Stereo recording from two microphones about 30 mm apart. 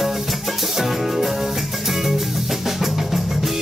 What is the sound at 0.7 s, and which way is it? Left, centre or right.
Music, centre.